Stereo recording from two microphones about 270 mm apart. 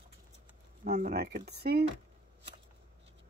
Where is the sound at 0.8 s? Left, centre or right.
Right.